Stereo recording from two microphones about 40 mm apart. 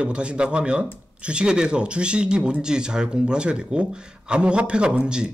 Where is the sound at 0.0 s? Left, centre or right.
Right.